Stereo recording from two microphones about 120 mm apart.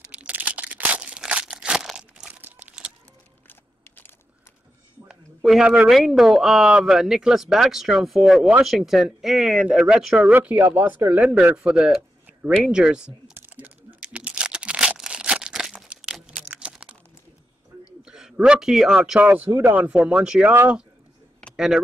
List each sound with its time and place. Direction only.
0.0 s a sound: 10° right (ahead or behind)
2.4 s crumpling: 10° right (ahead or behind)
5.0 s speech: 5° right (ahead or behind)
14.0 s crumpling: 10° right (ahead or behind)
18.0 s speech: 5° right (ahead or behind)